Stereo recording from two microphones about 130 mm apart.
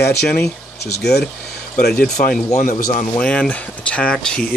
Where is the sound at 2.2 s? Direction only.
90° left.